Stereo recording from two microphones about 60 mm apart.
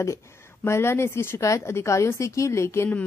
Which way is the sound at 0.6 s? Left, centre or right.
Left.